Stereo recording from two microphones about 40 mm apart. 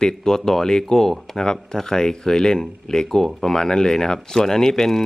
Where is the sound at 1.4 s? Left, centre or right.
Centre.